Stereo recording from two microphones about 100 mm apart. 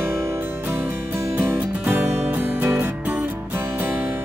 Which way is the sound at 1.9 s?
25° right (ahead or behind).